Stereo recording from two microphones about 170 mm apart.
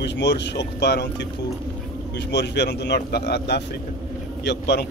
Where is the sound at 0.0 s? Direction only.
90° left.